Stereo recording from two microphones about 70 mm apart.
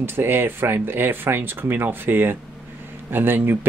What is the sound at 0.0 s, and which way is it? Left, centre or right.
Speech, right.